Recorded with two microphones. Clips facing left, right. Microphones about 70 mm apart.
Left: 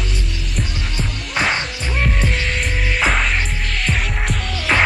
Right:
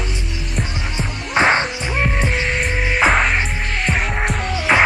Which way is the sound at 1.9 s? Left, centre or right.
Centre.